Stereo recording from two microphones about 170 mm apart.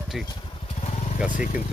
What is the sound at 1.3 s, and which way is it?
Speech, 50° left (ahead or behind).